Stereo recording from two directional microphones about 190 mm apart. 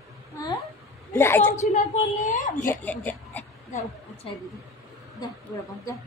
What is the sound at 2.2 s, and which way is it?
Speech, 40° left (ahead or behind).